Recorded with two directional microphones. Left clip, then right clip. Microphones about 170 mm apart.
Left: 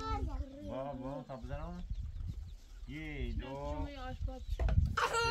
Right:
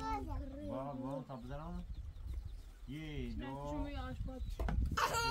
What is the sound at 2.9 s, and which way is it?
Speech, 40° left (ahead or behind).